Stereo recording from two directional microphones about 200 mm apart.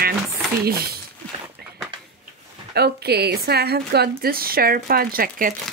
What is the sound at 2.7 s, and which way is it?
A woman's voice, 55° right (ahead or behind).